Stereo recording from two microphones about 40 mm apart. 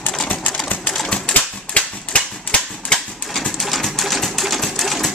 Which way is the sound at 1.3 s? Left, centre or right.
Left.